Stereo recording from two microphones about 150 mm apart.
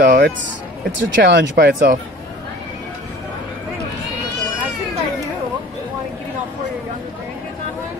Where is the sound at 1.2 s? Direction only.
90° right.